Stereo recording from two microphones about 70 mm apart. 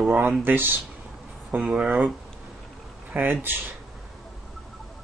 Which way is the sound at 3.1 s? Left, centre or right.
Right.